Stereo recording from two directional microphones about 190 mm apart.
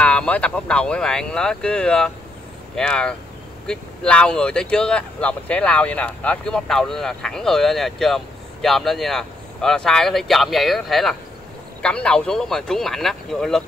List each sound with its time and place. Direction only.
0.0 s speech: 5° left (ahead or behind)